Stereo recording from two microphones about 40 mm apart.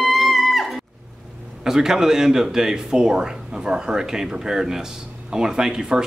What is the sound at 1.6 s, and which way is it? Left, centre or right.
Speech, centre.